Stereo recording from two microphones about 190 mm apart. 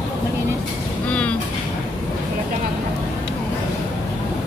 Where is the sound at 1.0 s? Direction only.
5° left (ahead or behind).